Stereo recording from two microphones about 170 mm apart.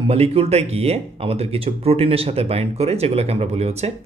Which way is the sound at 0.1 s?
35° right (ahead or behind).